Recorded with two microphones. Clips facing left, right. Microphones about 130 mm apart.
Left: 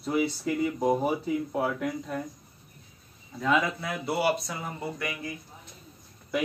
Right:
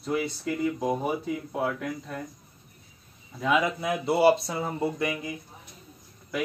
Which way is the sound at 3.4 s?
15° right (ahead or behind).